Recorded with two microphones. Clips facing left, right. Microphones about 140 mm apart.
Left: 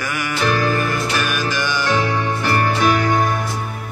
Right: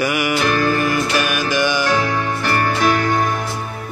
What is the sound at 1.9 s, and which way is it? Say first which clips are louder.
Music: even; 20° left (ahead or behind).